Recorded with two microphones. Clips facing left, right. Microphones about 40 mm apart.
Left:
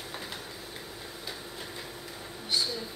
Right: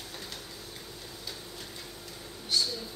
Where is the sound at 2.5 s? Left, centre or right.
Centre.